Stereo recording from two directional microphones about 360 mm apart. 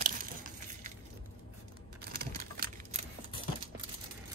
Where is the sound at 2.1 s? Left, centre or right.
Right.